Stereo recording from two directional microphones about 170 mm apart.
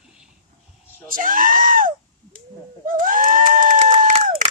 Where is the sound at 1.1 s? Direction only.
55° right (ahead or behind).